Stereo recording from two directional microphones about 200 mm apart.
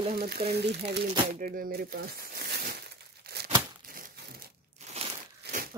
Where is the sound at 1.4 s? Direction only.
45° right (ahead or behind).